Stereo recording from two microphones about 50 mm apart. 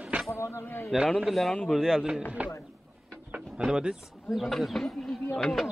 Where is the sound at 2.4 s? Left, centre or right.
Right.